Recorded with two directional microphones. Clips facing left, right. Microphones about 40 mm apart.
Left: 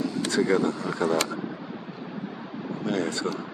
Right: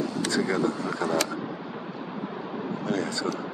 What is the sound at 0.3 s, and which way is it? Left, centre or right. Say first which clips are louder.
Speech: left 3 dB; centre.